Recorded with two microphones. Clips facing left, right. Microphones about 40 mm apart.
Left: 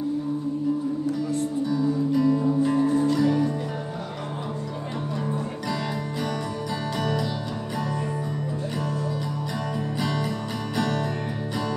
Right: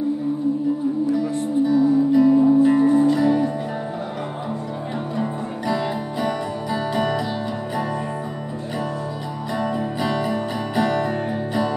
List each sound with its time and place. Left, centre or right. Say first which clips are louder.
1.3 s music: right 6 dB; right
6.2 s music: right 6 dB; right
9.8 s music: right 4 dB; centre